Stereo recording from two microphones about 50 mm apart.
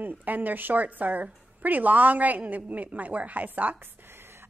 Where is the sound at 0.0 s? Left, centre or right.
Right.